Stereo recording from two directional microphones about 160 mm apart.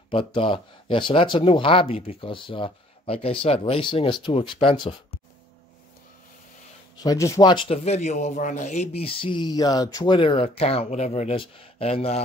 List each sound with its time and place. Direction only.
0.1 s a man's voice: 35° left (ahead or behind)
7.0 s a man's voice: 20° left (ahead or behind); by 12.2 s 40° left (ahead or behind)